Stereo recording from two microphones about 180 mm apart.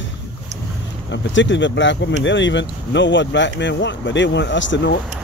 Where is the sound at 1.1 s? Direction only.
90° left.